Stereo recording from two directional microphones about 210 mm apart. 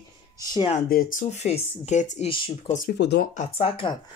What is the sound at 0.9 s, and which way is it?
Speech, 40° left (ahead or behind).